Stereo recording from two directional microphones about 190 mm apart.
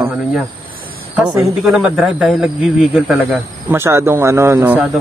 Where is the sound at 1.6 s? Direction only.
5° right (ahead or behind).